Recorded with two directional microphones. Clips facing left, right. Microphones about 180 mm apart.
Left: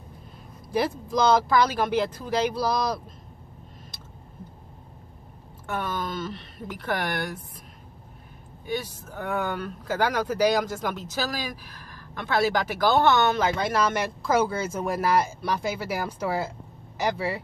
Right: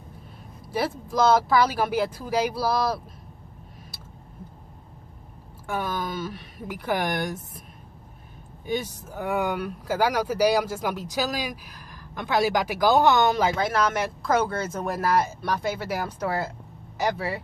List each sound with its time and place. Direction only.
0.7 s speech: 5° right (ahead or behind)
5.7 s speech: 5° right (ahead or behind)
8.6 s speech: 20° right (ahead or behind); by 17.4 s centre (ahead or behind)